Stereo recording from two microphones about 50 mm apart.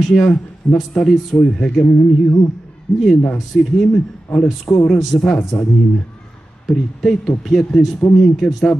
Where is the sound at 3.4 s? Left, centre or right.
Centre.